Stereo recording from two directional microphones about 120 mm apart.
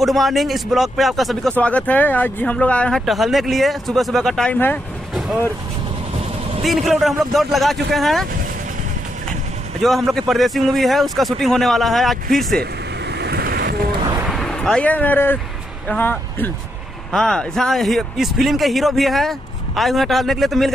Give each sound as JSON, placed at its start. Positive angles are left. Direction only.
{"t": 0.0, "sound": "speech", "side_deg": 0}
{"t": 1.5, "sound": "speech", "side_deg": 10}
{"t": 3.1, "sound": "speech", "side_deg": 0}
{"t": 6.6, "sound": "speech", "side_deg": 0}
{"t": 9.8, "sound": "speech", "side_deg": 0}
{"t": 14.2, "sound": "vehicle", "side_deg": 0}
{"t": 15.9, "sound": "speech", "side_deg": 15}
{"t": 17.1, "sound": "speech", "side_deg": 5}